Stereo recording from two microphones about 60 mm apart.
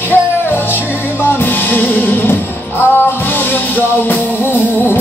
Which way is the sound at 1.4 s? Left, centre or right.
Left.